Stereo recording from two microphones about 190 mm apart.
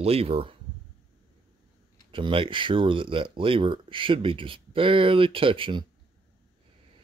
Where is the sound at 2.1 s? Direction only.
25° right (ahead or behind).